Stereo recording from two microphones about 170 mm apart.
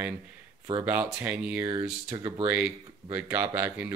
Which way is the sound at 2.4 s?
10° right (ahead or behind).